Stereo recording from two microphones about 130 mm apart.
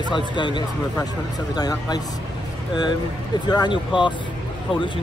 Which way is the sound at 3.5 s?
35° left (ahead or behind).